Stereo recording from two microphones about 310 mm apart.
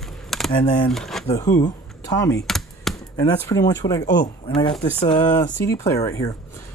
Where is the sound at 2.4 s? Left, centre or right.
Centre.